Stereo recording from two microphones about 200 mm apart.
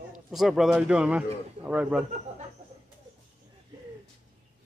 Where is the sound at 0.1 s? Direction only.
Centre (ahead or behind).